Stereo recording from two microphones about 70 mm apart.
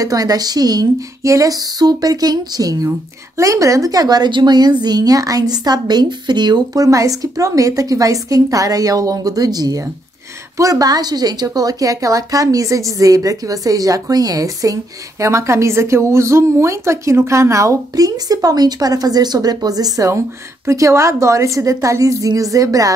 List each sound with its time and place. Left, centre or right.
0.0 s a woman's voice: right
4.8 s a woman's voice: right
20.6 s a woman's voice: right